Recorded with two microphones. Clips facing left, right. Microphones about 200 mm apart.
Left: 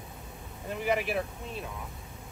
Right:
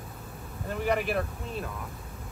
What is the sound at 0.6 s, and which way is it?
Speech, centre (ahead or behind).